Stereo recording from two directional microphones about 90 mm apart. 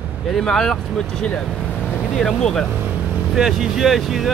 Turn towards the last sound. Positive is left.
turn(degrees=0)  # may be behind; listen again after turning